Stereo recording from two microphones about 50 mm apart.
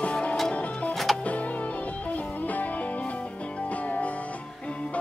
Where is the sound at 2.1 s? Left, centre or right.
Left.